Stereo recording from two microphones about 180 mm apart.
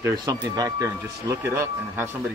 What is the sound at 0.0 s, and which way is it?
Speech, 20° right (ahead or behind).